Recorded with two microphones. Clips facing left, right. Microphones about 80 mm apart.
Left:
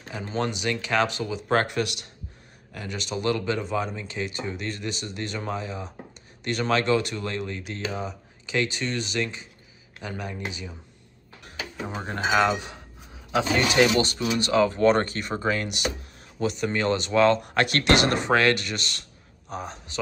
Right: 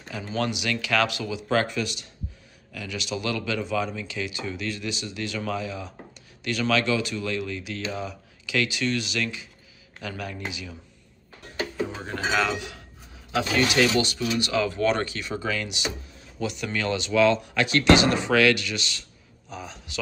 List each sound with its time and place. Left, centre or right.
0.2 s speech: left
2.7 s speech: left
10.0 s speech: left
12.3 s speech: centre
12.5 s speech: left
13.3 s speech: centre
13.9 s speech: left
16.3 s speech: left
18.3 s speech: left